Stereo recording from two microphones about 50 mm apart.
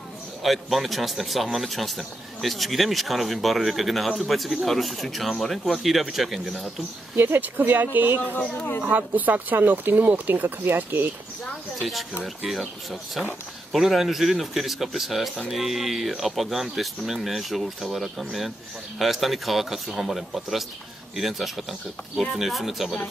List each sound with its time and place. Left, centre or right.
0.4 s a man's voice: centre
7.2 s speech: right
13.7 s a man's voice: centre